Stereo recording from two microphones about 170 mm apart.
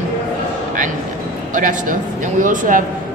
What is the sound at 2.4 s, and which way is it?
Speech, 50° right (ahead or behind).